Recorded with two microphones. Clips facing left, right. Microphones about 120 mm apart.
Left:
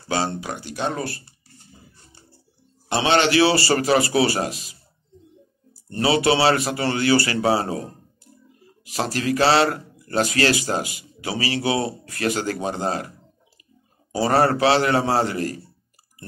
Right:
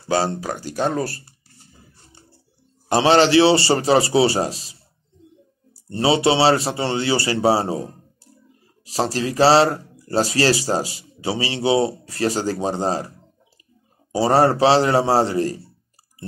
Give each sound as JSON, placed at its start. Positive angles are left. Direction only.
{"t": 0.1, "sound": "speech", "side_deg": -40}
{"t": 2.9, "sound": "speech", "side_deg": -35}
{"t": 5.8, "sound": "speech", "side_deg": -25}
{"t": 14.1, "sound": "speech", "side_deg": -30}